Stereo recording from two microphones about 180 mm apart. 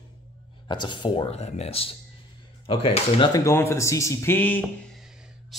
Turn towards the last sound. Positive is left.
turn(degrees=10)  # may be behind; listen again after turning